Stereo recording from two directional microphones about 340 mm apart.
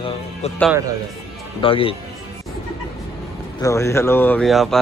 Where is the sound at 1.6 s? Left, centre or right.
Centre.